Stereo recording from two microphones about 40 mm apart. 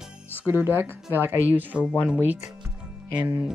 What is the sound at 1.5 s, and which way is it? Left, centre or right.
Speech, right.